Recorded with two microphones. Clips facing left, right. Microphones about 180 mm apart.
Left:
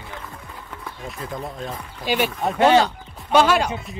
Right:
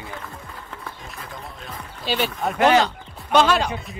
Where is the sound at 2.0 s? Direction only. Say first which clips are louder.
Left 2 dB; 10° left (ahead or behind).